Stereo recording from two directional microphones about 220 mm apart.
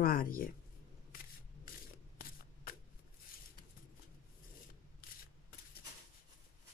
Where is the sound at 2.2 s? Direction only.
40° left (ahead or behind).